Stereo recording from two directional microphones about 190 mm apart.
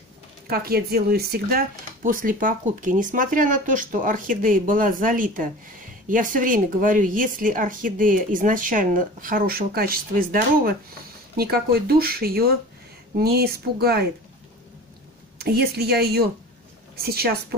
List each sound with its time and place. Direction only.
0.5 s speech: 55° right (ahead or behind)
15.3 s a woman's voice: 55° right (ahead or behind)